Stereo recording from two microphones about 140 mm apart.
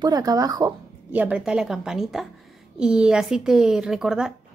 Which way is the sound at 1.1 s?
10° right (ahead or behind).